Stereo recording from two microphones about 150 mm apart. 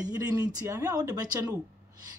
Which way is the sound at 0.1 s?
25° right (ahead or behind).